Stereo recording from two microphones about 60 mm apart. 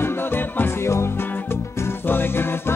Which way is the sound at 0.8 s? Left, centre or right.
Left.